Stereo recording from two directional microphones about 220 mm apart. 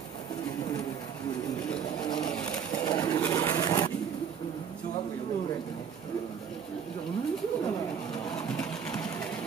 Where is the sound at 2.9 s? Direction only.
10° left (ahead or behind).